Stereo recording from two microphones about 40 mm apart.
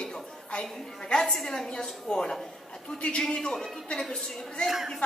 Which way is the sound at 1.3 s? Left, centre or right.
Centre.